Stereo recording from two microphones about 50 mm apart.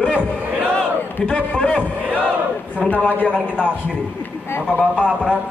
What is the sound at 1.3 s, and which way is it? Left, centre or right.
Speech, left.